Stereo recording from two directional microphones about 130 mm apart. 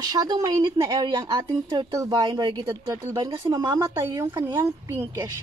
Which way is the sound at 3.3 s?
35° right (ahead or behind).